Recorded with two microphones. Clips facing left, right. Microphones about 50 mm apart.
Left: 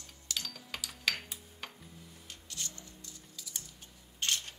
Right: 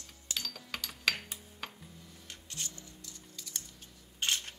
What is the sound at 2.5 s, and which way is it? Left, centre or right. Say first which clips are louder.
Music: even; right.